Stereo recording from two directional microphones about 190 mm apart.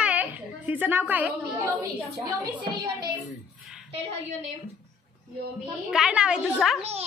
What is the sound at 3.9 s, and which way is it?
Speech, 35° right (ahead or behind).